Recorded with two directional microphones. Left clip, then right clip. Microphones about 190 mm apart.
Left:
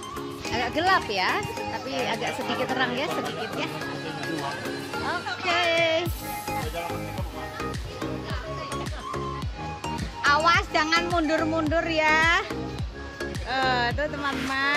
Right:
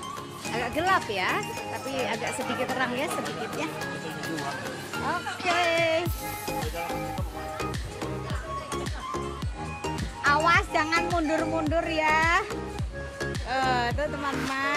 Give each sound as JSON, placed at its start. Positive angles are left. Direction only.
{"t": 0.5, "sound": "speech", "side_deg": 0}
{"t": 5.6, "sound": "speech", "side_deg": -20}
{"t": 10.2, "sound": "speech", "side_deg": -5}
{"t": 13.5, "sound": "speech", "side_deg": -10}